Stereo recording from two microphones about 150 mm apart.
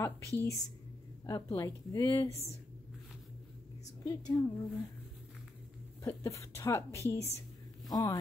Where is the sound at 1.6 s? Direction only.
20° left (ahead or behind).